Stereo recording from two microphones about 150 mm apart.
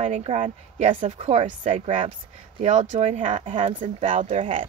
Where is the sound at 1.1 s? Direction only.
40° right (ahead or behind).